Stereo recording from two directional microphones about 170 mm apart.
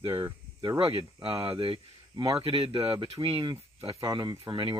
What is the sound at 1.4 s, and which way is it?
Speech, 30° right (ahead or behind).